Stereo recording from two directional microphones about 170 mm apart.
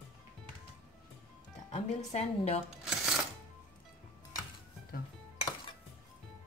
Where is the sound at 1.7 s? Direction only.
40° left (ahead or behind).